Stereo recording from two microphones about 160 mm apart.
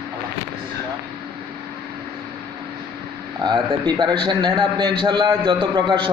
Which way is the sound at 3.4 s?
25° right (ahead or behind).